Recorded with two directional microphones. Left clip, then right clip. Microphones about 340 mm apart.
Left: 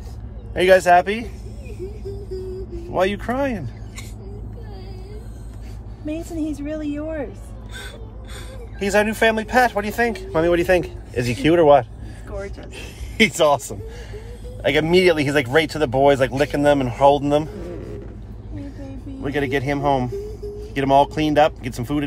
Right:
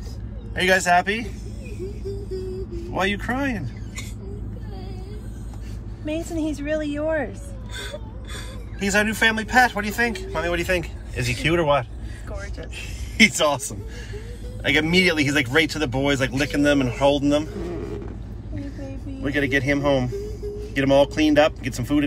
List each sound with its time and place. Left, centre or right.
0.6 s a man's voice: centre
2.9 s speech: centre
6.3 s speech: centre
8.7 s a man's voice: centre
13.2 s a man's voice: centre
19.2 s speech: centre